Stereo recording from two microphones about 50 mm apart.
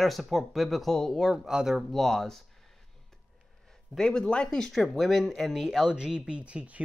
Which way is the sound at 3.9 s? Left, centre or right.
Centre.